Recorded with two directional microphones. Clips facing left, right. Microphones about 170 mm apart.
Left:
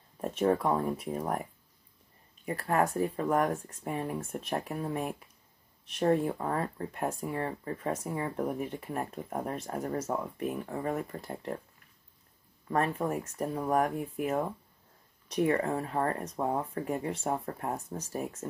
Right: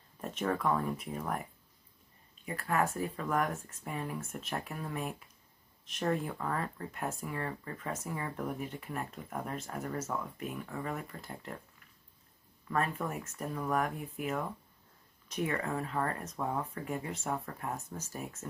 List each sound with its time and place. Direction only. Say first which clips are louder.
0.2 s speech: left 6 dB; 30° left (ahead or behind)
2.4 s speech: left 4 dB; 35° left (ahead or behind)
12.6 s speech: left 4 dB; 35° left (ahead or behind)